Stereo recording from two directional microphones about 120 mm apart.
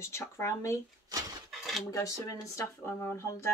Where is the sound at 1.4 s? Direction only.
Centre (ahead or behind).